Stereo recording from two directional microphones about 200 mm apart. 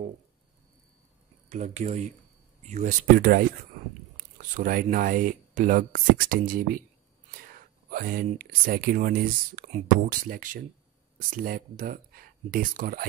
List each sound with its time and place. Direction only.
1.5 s speech: 35° right (ahead or behind)
4.6 s speech: 45° right (ahead or behind)